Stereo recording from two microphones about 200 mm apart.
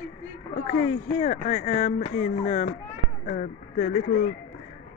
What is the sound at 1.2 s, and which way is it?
A man's voice, 35° left (ahead or behind).